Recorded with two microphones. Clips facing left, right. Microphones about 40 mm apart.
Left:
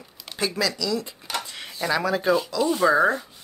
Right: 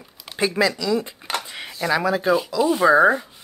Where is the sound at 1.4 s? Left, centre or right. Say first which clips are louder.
Right 3 dB; centre.